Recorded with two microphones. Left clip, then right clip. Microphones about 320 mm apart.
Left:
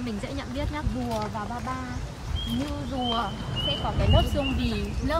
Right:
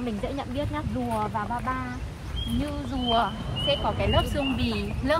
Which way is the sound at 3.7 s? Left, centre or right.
Centre.